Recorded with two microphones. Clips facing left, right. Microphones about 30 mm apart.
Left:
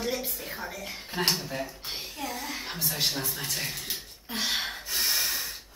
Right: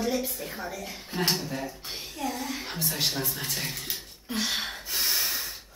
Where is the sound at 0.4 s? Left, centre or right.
Centre.